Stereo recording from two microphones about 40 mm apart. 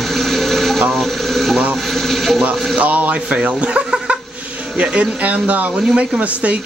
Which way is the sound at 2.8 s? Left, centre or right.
Right.